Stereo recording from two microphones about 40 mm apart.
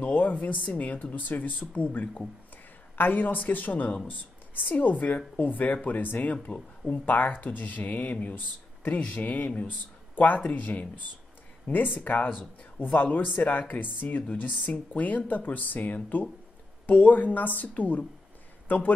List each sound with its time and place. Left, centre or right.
0.0 s speech: left
1.1 s speech: left
1.7 s speech: left
3.0 s speech: left
6.5 s speech: left
6.9 s speech: left
11.6 s speech: left
12.4 s a man's voice: left
13.3 s speech: left
14.3 s speech: left
14.9 s speech: left